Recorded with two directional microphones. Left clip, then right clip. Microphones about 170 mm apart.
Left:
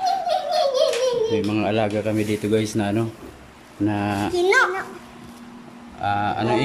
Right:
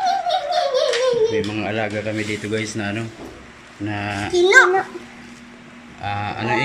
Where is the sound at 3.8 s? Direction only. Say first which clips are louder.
Left 2 dB; 20° left (ahead or behind).